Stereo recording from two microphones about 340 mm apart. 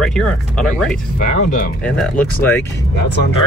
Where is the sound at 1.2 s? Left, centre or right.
Left.